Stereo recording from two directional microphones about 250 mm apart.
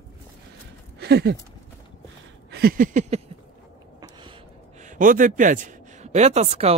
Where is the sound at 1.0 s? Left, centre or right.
Right.